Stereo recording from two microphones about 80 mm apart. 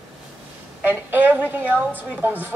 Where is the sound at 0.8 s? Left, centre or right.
Right.